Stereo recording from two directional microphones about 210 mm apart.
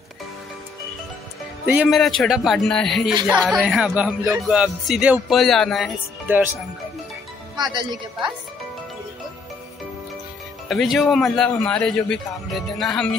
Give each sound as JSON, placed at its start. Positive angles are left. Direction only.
{"t": 1.8, "sound": "speech", "side_deg": 0}
{"t": 7.5, "sound": "speech", "side_deg": -20}
{"t": 10.7, "sound": "speech", "side_deg": 0}